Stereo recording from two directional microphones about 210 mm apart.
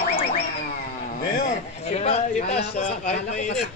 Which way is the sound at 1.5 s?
30° left (ahead or behind).